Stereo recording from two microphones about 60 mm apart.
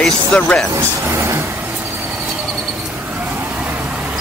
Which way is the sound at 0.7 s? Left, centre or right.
Right.